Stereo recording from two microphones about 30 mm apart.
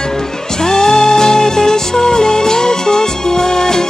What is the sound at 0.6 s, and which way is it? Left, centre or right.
Music, centre.